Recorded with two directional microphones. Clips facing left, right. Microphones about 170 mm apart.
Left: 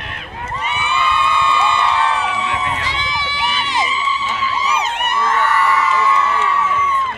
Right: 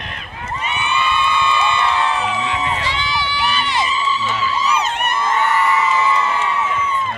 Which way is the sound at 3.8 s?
10° left (ahead or behind).